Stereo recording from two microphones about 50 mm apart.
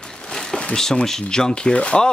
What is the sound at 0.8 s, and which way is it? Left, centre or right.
Speech, centre.